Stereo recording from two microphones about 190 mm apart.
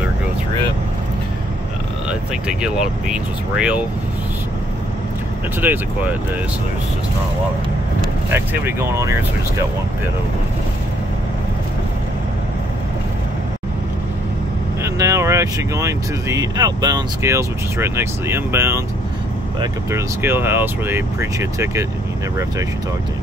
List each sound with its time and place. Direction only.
2.0 s speech: 5° right (ahead or behind)
5.6 s speech: 10° right (ahead or behind)
8.3 s speech: 10° right (ahead or behind)
14.8 s speech: 15° right (ahead or behind)